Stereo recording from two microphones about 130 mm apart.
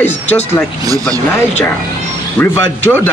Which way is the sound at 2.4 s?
15° left (ahead or behind).